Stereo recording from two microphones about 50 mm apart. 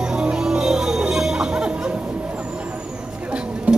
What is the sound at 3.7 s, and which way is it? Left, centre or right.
Music, right.